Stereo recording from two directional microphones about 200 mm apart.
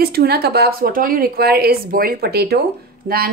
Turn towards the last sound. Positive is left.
turn(degrees=-50)  # may be behind; listen again after turning